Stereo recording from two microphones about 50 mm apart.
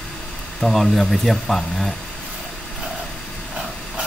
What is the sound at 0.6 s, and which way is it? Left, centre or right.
Speech, centre.